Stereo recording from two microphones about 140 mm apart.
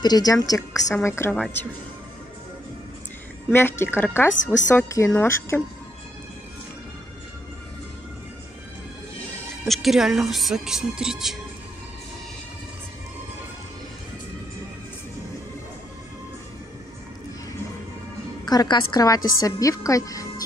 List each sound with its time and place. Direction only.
0.0 s a woman's voice: 30° left (ahead or behind)
3.5 s speech: 15° left (ahead or behind)
9.7 s a woman's voice: centre (ahead or behind)
18.4 s a woman's voice: 30° left (ahead or behind)